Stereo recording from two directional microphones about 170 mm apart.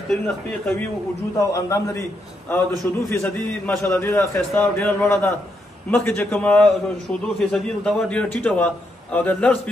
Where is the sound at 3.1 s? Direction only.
15° left (ahead or behind).